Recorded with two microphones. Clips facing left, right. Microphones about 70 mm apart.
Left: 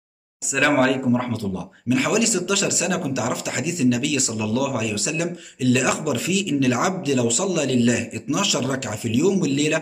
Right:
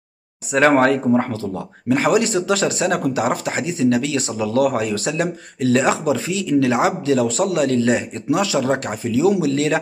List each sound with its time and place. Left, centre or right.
0.5 s speech: right